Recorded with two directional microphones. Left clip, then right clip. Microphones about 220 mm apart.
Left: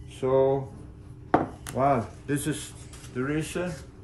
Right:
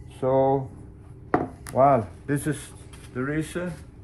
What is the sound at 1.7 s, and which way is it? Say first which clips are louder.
Speech: right 5 dB; 15° right (ahead or behind).